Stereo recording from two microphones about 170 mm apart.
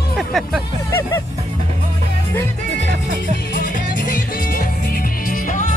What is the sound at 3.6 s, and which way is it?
Music, 50° left (ahead or behind).